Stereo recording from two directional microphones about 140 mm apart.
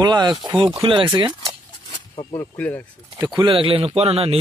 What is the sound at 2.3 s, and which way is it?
Speech, 15° left (ahead or behind).